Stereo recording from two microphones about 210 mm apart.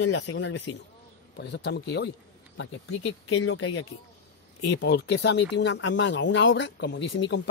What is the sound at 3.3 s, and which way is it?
Speech, 90° left.